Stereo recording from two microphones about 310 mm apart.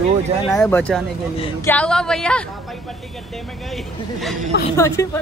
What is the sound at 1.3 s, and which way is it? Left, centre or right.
Speech, centre.